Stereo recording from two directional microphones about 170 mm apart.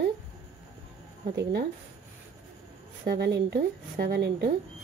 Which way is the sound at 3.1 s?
75° right (ahead or behind).